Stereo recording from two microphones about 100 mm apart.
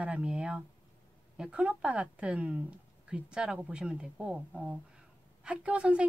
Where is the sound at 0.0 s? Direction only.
10° right (ahead or behind).